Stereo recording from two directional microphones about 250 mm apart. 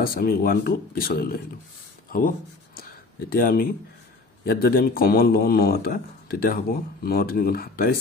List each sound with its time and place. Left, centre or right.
0.0 s speech: left
2.0 s a sound: left
4.5 s speech: left